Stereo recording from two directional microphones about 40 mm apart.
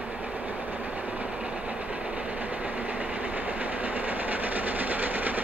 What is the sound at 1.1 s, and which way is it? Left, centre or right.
Train, right.